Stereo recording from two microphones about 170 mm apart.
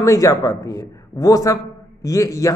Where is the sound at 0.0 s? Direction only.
20° left (ahead or behind).